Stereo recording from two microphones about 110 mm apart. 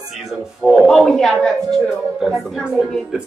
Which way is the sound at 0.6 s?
Centre (ahead or behind).